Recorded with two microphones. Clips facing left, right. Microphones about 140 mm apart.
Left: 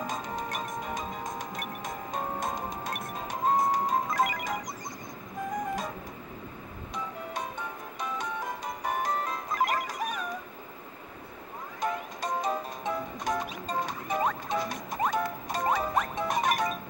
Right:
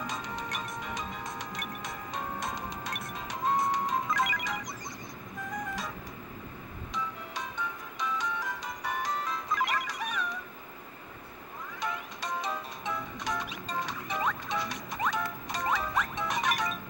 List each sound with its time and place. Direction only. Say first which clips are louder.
0.0 s music: left 3 dB; 45° left (ahead or behind)
7.3 s music: even; 50° left (ahead or behind)
11.8 s music: left 5 dB; 45° left (ahead or behind)